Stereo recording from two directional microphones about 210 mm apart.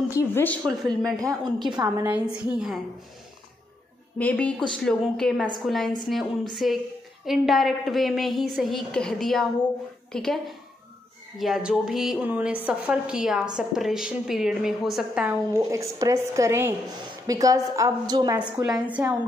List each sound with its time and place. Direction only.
0.1 s a woman's voice: 10° left (ahead or behind)
1.2 s a woman's voice: 20° right (ahead or behind)
2.0 s a woman's voice: 5° right (ahead or behind)
4.2 s a woman's voice: 5° left (ahead or behind); by 18.4 s 20° right (ahead or behind)
18.4 s a woman's voice: 5° right (ahead or behind)